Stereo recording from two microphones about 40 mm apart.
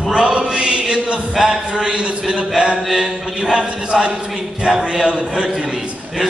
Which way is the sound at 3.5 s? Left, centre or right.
Right.